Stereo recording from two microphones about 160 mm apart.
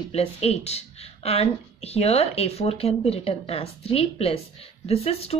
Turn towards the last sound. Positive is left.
turn(degrees=40)  # may be behind; listen again after turning